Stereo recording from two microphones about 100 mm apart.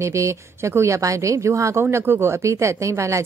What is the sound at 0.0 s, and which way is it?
Speech, 30° right (ahead or behind).